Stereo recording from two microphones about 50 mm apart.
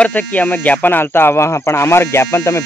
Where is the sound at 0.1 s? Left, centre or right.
Left.